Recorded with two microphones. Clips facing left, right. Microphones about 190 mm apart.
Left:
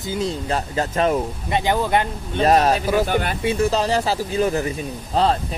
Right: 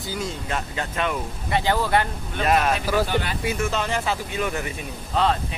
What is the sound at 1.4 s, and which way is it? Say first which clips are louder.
Speech: even; 20° left (ahead or behind).